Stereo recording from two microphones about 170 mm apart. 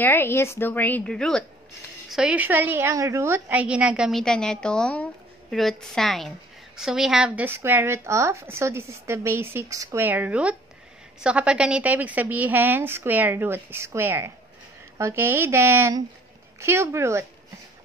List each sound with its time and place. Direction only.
0.0 s a woman's voice: 15° left (ahead or behind); by 17.3 s 15° right (ahead or behind)